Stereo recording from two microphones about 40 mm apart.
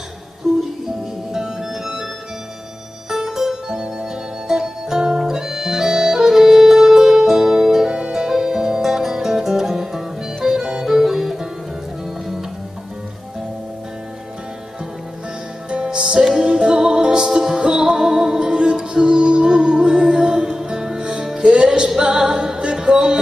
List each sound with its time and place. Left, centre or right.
0.5 s music: centre
3.1 s music: centre
15.7 s music: right
16.3 s music: centre